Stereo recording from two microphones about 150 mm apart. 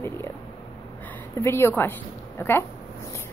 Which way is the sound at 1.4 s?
15° left (ahead or behind).